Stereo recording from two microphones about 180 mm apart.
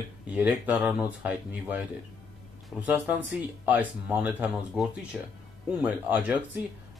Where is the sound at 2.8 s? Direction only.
10° right (ahead or behind).